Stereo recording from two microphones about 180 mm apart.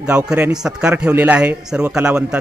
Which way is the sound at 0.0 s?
5° right (ahead or behind).